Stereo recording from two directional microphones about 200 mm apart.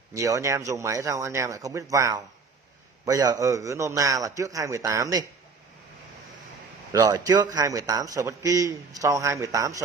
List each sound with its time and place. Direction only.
0.1 s a man's voice: 15° right (ahead or behind)
6.9 s a man's voice: 20° right (ahead or behind)